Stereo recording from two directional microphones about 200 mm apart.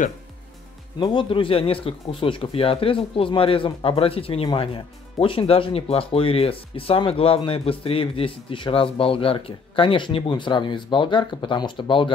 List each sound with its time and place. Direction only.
0.9 s speech: 25° left (ahead or behind)